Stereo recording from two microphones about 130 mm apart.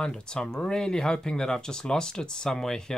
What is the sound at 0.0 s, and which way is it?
Speech, 5° left (ahead or behind).